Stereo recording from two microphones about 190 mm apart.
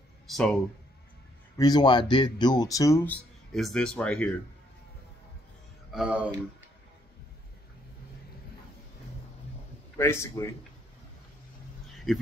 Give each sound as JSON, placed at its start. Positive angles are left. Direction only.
{"t": 0.3, "sound": "speech", "side_deg": 5}
{"t": 1.6, "sound": "speech", "side_deg": 20}
{"t": 3.5, "sound": "speech", "side_deg": 0}
{"t": 5.9, "sound": "speech", "side_deg": -5}
{"t": 10.2, "sound": "a man's voice", "side_deg": 15}
{"t": 12.1, "sound": "speech", "side_deg": 0}